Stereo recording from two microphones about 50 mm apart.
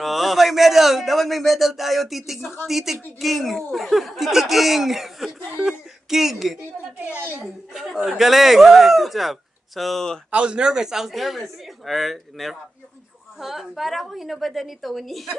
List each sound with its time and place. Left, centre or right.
0.0 s speech: centre
7.2 s speech: right
7.7 s speech: centre
10.3 s speech: centre